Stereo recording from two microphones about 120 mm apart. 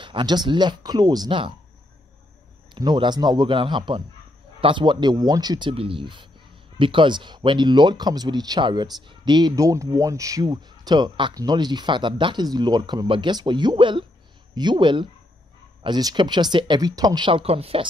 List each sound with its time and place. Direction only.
0.0 s speech: 40° right (ahead or behind)
2.7 s speech: 40° right (ahead or behind); by 17.8 s 55° right (ahead or behind)